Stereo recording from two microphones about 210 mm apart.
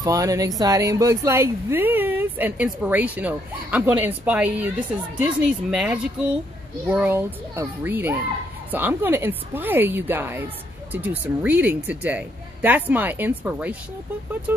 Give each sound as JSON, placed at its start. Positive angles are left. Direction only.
{"t": 0.0, "sound": "a woman's voice", "side_deg": -15}